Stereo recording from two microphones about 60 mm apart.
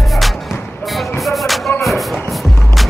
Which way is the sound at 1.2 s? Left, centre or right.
Centre.